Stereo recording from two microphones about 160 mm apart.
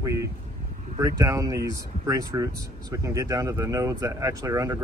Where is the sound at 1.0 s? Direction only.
20° right (ahead or behind).